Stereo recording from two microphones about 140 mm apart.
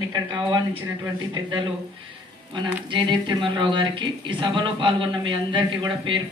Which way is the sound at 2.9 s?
35° right (ahead or behind).